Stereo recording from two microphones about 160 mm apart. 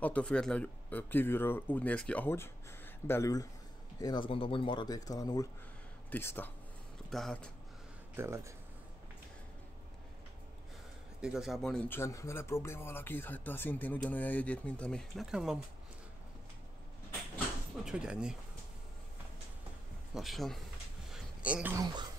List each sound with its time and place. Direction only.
0.0 s speech: 5° left (ahead or behind)
7.1 s speech: centre (ahead or behind)
8.2 s speech: 15° right (ahead or behind)
11.1 s speech: 5° right (ahead or behind)
17.8 s speech: 5° right (ahead or behind)
20.2 s speech: centre (ahead or behind)
21.1 s a sound: 5° right (ahead or behind)